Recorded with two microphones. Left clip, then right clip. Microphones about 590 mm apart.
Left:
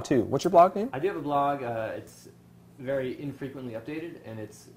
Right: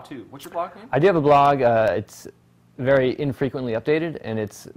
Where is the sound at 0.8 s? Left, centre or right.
Right.